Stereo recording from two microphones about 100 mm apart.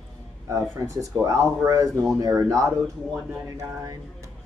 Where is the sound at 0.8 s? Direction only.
35° right (ahead or behind).